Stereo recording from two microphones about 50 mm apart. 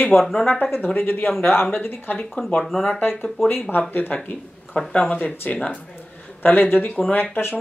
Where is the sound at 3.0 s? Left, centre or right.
Left.